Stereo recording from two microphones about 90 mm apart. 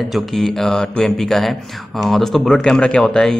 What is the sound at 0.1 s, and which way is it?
Speech, 5° left (ahead or behind).